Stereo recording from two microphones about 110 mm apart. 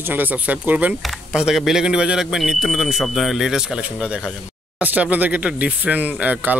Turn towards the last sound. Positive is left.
turn(degrees=-15)  # may be behind; listen again after turning